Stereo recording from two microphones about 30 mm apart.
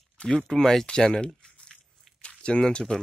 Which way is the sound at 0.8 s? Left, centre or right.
Left.